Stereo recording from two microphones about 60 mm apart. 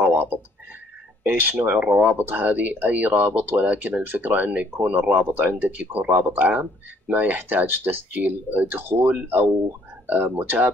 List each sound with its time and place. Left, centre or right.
0.0 s frog: right
1.2 s speech: right